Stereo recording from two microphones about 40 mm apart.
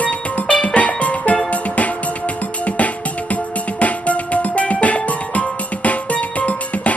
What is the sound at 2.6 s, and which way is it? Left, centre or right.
Music, left.